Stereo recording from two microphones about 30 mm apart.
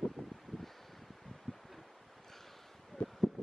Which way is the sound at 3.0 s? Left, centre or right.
Left.